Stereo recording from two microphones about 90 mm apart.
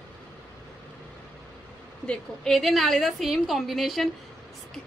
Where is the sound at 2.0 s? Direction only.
5° left (ahead or behind).